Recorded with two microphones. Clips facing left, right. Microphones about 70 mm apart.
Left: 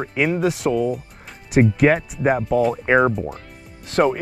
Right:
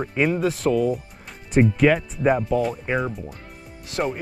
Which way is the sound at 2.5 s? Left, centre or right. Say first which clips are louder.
Left 4 dB; left.